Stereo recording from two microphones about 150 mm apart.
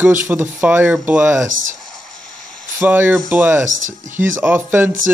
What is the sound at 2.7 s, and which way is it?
Speech, 15° right (ahead or behind).